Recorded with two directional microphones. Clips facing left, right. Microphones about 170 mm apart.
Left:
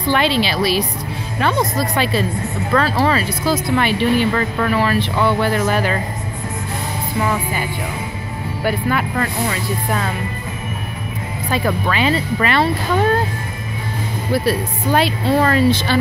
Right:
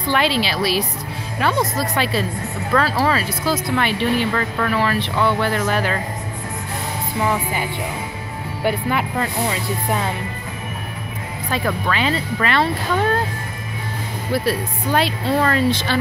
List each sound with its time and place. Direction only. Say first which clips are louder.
0.1 s speech: left 2 dB; 5° right (ahead or behind)
7.2 s speech: left 1 dB; 15° right (ahead or behind)
8.6 s speech: left 1 dB; 15° right (ahead or behind)
11.5 s speech: left 2 dB; 10° left (ahead or behind)
14.3 s speech: left 2 dB; centre (ahead or behind)